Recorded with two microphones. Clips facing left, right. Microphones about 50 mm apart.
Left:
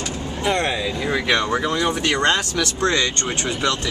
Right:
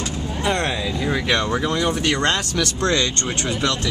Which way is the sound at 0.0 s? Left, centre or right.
Centre.